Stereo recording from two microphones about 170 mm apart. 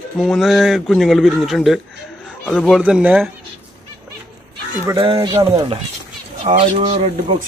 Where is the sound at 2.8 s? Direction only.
10° right (ahead or behind).